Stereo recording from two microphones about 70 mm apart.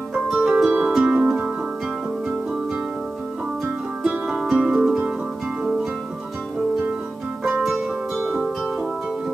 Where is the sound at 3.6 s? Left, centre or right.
Centre.